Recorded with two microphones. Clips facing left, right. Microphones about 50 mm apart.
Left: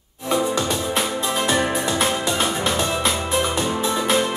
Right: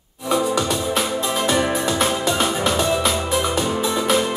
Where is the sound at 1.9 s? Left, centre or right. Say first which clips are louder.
Right 1 dB; centre.